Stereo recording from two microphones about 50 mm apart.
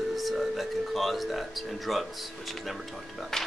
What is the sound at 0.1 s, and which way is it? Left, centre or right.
Music, centre.